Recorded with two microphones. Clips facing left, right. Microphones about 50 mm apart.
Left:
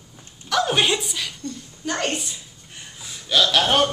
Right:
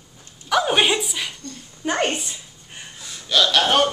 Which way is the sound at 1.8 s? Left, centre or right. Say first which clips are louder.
Right 3 dB; right.